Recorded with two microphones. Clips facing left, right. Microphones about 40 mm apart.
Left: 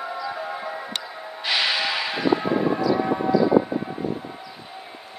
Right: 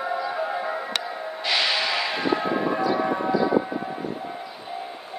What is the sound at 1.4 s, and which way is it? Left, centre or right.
Church bell, centre.